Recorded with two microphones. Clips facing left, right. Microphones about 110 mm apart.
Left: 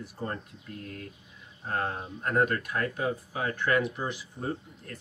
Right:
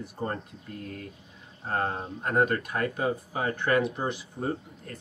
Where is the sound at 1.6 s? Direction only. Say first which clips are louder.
Right 2 dB; 30° right (ahead or behind).